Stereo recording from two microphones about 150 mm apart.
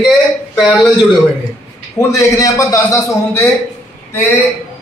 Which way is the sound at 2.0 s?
20° left (ahead or behind).